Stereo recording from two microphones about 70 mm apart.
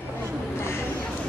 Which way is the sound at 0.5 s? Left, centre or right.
Left.